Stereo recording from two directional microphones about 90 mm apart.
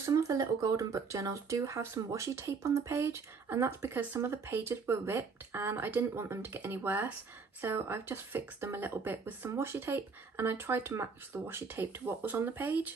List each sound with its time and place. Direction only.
0.0 s speech: 40° right (ahead or behind); by 12.9 s 20° right (ahead or behind)